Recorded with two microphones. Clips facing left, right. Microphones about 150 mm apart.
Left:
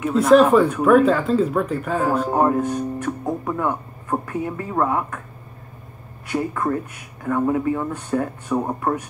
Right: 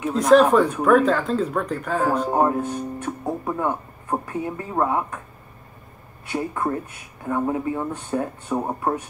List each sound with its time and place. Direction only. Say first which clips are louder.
0.3 s speech: left 1 dB; 5° left (ahead or behind)
2.3 s speech: left 2 dB; 25° right (ahead or behind)
3.4 s music: left 1 dB; 30° right (ahead or behind)
4.3 s speech: left 2 dB; 25° right (ahead or behind)
6.2 s speech: left 2 dB; 25° right (ahead or behind)